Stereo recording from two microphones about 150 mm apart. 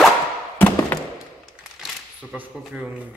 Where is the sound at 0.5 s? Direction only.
15° left (ahead or behind).